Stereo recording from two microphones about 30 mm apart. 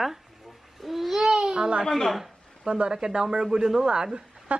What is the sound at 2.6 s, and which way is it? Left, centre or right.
Speech, right.